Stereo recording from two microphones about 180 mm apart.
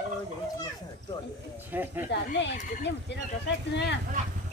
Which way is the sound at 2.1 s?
75° left (ahead or behind).